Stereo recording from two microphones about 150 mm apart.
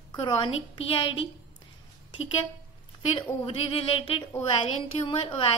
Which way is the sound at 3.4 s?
40° left (ahead or behind).